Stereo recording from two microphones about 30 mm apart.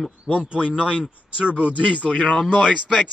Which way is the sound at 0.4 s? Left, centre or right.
Right.